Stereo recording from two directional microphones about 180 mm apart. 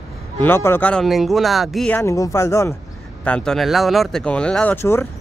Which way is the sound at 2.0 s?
15° left (ahead or behind).